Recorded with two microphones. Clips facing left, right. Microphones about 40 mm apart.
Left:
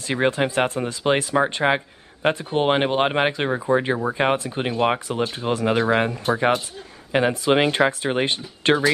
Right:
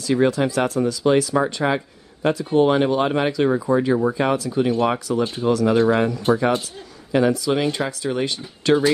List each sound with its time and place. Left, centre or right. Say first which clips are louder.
0.0 s speech: right 3 dB; left